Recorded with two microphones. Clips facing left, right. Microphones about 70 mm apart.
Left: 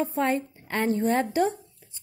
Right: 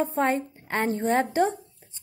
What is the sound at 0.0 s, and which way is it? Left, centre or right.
A woman's voice, right.